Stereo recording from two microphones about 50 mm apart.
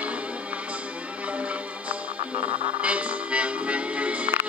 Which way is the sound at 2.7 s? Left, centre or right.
Right.